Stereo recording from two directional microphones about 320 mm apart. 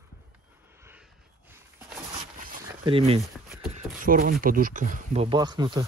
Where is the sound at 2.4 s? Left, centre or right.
Right.